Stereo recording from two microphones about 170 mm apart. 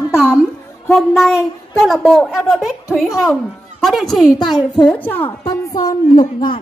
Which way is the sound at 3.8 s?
Centre (ahead or behind).